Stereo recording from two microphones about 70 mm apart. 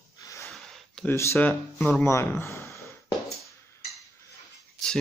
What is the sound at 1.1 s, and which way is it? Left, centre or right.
Speech, left.